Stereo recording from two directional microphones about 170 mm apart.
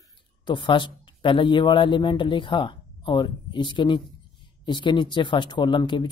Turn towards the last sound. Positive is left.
turn(degrees=25)  # may be behind; listen again after turning